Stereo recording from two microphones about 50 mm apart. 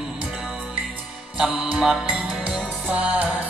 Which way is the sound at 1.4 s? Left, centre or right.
Centre.